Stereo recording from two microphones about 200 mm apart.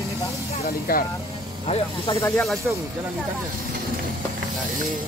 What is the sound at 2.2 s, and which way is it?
Speech, 15° left (ahead or behind).